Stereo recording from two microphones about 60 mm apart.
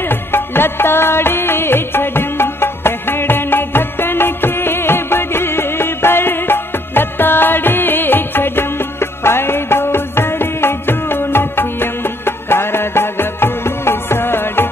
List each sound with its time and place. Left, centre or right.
0.1 s music: left